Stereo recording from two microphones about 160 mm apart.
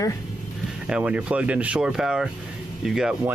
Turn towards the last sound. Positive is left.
turn(degrees=-5)  # may be behind; listen again after turning